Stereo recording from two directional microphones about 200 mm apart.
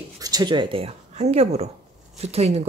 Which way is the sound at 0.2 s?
20° right (ahead or behind).